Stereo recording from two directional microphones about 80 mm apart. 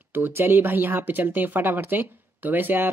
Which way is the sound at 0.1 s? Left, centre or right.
Right.